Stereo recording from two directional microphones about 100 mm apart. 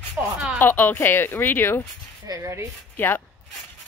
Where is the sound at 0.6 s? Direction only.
20° left (ahead or behind).